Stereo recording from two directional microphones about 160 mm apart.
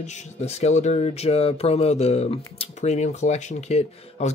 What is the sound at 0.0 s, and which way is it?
Speech, 45° left (ahead or behind).